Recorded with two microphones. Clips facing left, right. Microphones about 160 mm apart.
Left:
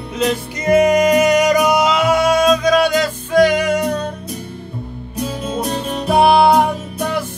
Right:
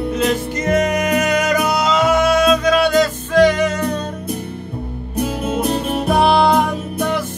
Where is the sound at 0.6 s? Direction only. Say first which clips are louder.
Left 6 dB; 10° left (ahead or behind).